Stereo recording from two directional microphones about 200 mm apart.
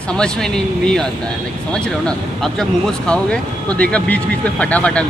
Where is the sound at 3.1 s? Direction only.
5° left (ahead or behind).